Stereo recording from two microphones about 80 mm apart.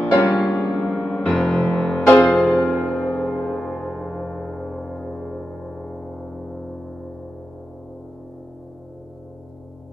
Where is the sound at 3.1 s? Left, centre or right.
Centre.